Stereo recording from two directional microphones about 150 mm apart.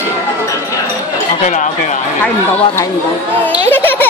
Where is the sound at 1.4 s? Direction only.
55° left (ahead or behind).